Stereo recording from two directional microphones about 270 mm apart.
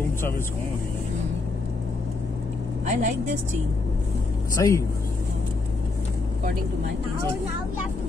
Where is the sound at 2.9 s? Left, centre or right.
Right.